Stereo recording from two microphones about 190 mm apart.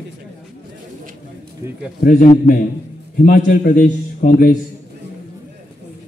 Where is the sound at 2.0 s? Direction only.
45° left (ahead or behind).